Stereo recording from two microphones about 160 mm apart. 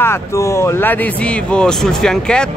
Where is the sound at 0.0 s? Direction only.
15° left (ahead or behind).